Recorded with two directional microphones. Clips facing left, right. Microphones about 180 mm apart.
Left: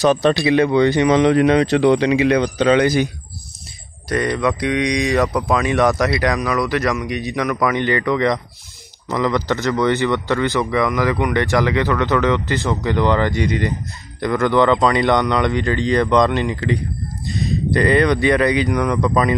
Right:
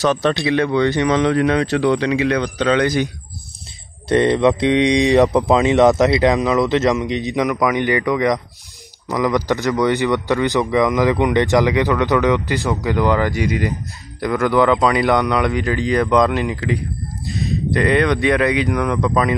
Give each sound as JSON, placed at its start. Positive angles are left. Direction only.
{"t": 0.0, "sound": "speech", "side_deg": 15}
{"t": 4.1, "sound": "a man's voice", "side_deg": -25}